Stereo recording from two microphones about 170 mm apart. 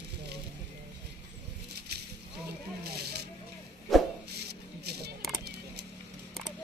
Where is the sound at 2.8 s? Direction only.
70° right (ahead or behind).